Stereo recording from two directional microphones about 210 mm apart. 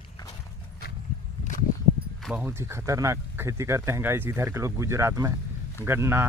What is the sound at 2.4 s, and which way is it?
Speech, 10° right (ahead or behind).